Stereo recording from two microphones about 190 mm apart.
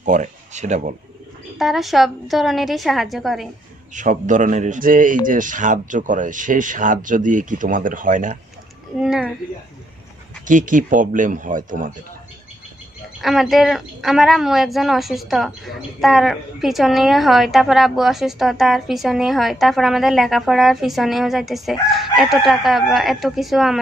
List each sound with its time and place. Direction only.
0.0 s speech: 40° right (ahead or behind)
1.6 s speech: centre (ahead or behind)
3.9 s speech: 40° right (ahead or behind)
9.0 s speech: 5° right (ahead or behind)
10.4 s speech: 45° right (ahead or behind)
13.2 s speech: centre (ahead or behind)